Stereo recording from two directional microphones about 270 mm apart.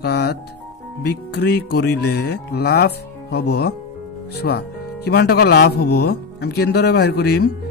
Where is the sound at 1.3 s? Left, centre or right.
Left.